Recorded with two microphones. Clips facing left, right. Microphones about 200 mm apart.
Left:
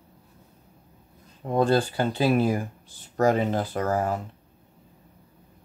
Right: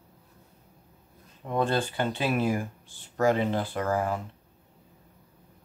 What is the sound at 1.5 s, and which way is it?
Speech, 35° left (ahead or behind).